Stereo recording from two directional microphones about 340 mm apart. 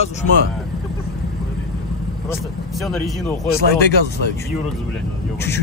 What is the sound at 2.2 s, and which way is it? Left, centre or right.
Speech, centre.